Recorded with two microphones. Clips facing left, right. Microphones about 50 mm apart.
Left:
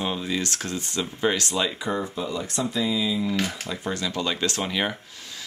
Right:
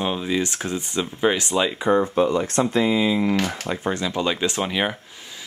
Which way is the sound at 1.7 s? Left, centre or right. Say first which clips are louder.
Right 9 dB; right.